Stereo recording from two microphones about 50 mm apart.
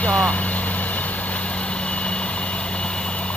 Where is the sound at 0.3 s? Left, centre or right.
Left.